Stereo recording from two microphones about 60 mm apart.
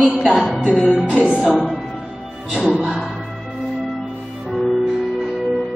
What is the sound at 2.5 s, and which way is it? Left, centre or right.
Speech, centre.